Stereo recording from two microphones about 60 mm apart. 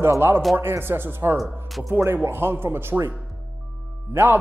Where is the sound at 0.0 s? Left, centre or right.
Right.